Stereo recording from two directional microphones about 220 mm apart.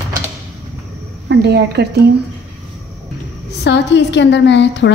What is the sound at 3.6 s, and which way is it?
A woman's voice, 50° left (ahead or behind).